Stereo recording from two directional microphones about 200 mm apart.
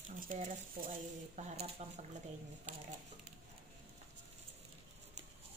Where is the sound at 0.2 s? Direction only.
45° right (ahead or behind).